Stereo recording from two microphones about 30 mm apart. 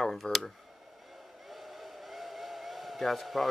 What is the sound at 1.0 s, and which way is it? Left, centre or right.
Vehicle, centre.